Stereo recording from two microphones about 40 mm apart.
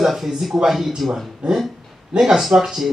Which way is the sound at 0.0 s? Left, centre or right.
Centre.